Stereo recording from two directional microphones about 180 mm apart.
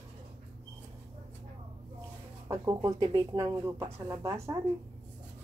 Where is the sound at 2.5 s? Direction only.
15° right (ahead or behind).